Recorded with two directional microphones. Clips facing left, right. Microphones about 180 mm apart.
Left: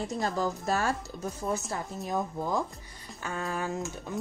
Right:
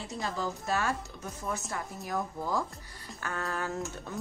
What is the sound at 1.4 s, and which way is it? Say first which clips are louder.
Speech: left 3 dB; 30° left (ahead or behind).